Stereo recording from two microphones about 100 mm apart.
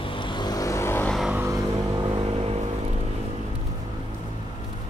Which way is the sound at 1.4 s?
30° right (ahead or behind).